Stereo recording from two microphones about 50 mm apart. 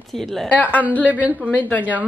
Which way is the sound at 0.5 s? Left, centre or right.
Left.